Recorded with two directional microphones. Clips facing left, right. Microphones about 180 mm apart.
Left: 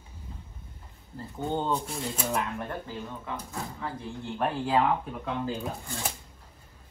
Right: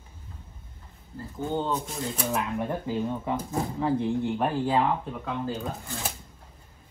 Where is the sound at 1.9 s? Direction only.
5° right (ahead or behind).